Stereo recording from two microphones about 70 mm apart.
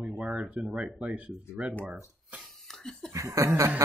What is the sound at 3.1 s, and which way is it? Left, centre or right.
Laughter, right.